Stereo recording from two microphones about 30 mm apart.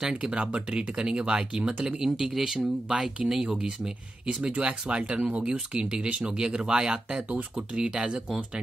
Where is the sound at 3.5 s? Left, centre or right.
Right.